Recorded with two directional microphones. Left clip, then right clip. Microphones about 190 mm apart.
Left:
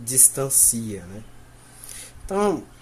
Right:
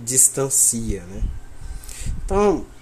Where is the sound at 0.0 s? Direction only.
10° right (ahead or behind).